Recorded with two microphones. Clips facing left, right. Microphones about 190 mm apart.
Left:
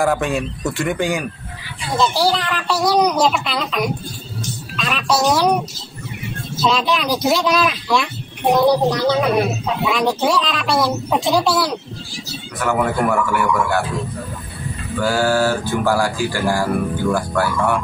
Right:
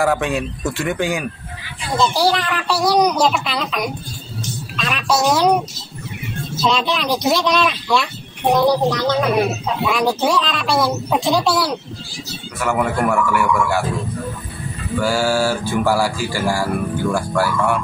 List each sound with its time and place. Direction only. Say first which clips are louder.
0.0 s speech: even; centre (ahead or behind)
6.7 s speech: left 1 dB; centre (ahead or behind)
15.0 s speech: left 1 dB; 5° right (ahead or behind)